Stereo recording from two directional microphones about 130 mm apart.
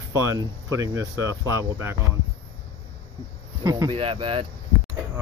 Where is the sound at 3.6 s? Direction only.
30° right (ahead or behind).